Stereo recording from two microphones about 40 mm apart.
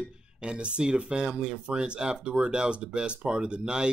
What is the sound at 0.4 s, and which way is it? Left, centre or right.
Speech, right.